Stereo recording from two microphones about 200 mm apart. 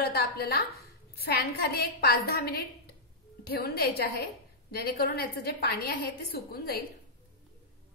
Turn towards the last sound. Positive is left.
turn(degrees=50)  # may be behind; listen again after turning